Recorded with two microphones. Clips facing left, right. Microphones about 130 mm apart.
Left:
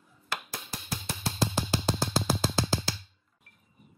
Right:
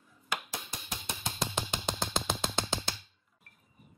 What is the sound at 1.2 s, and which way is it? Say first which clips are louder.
Music: left 5 dB; 5° left (ahead or behind).